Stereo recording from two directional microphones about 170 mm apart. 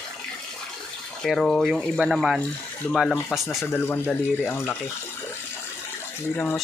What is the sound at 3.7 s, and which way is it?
Speech, 10° left (ahead or behind).